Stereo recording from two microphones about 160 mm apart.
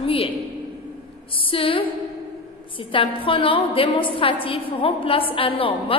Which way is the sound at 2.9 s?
35° left (ahead or behind).